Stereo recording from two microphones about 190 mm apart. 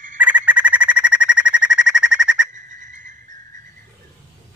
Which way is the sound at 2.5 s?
40° right (ahead or behind).